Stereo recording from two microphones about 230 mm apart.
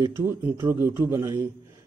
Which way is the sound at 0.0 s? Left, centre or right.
Centre.